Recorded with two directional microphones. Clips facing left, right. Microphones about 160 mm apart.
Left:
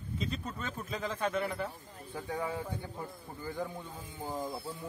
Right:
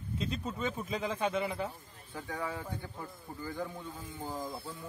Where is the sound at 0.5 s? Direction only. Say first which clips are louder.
Right 4 dB; 10° right (ahead or behind).